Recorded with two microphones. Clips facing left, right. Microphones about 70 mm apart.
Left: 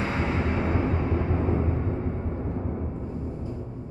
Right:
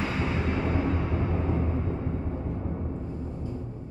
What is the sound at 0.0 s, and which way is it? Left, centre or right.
Music, left.